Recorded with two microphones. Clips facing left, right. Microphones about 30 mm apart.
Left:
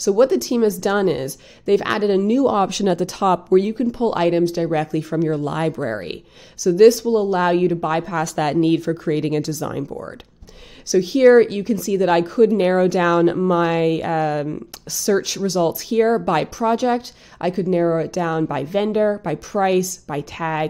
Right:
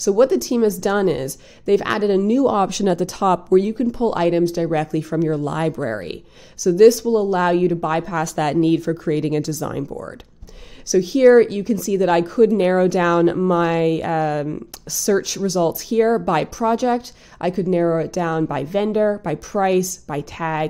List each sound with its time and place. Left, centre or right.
0.0 s a woman's voice: centre
5.2 s a woman's voice: centre